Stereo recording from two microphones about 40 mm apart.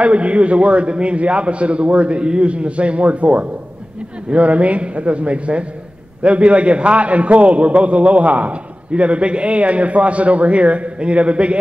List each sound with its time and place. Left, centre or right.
0.0 s a man's voice: right